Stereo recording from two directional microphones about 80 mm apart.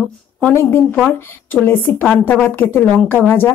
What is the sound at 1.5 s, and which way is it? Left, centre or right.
Speech, left.